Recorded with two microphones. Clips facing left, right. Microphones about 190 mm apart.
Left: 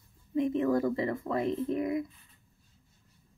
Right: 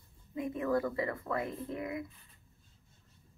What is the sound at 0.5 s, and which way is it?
Speech, 20° left (ahead or behind).